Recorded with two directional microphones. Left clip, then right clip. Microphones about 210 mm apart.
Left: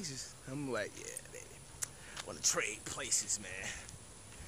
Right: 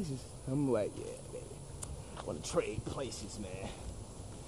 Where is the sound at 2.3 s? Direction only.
Centre (ahead or behind).